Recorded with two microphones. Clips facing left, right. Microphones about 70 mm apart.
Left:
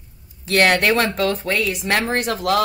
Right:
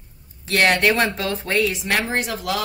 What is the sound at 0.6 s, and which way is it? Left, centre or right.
Speech, left.